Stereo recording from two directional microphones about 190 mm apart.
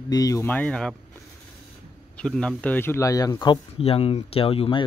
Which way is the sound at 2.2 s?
5° left (ahead or behind).